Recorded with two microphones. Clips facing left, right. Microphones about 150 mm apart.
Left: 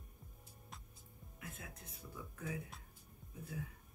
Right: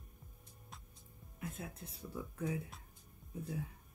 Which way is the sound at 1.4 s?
30° right (ahead or behind).